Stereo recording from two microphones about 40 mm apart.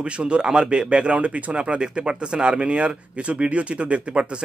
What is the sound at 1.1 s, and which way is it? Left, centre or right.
Speech, right.